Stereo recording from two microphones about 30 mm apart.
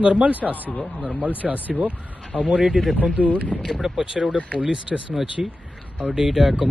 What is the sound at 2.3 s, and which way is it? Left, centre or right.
Speech, right.